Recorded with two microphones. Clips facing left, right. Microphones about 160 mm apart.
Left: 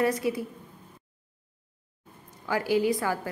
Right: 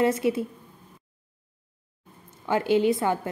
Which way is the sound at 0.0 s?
25° right (ahead or behind).